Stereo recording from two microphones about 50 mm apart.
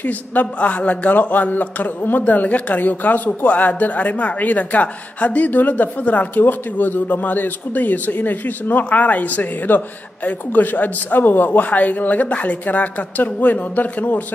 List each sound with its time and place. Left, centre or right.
0.0 s speech: left